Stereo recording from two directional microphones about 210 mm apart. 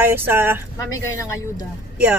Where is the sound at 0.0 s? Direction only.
10° right (ahead or behind).